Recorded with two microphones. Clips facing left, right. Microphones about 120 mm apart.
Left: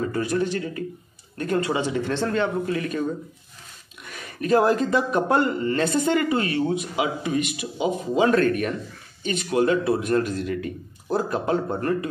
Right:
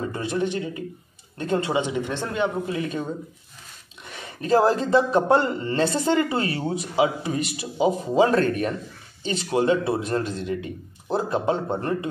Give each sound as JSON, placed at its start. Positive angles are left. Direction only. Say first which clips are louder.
{"t": 0.1, "sound": "speech", "louder": "left 2 dB", "side_deg": -25}
{"t": 4.0, "sound": "speech", "louder": "left 3 dB", "side_deg": -25}